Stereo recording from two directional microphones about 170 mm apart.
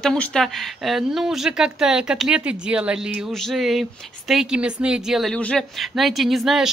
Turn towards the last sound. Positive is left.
turn(degrees=0)  # may be behind; listen again after turning